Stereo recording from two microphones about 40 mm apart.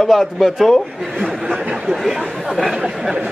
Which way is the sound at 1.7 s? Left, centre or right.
Right.